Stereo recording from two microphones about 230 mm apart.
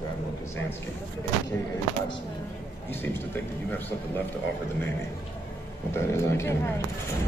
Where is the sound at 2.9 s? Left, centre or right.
Centre.